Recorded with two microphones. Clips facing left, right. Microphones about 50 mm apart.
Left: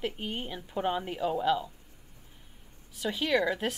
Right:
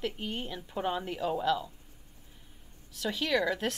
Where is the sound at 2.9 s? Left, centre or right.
Centre.